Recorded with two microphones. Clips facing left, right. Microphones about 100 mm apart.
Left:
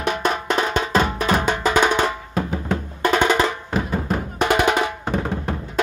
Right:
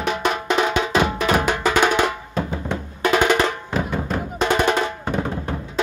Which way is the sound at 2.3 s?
5° left (ahead or behind).